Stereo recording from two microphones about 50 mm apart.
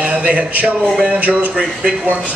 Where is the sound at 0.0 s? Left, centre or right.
Right.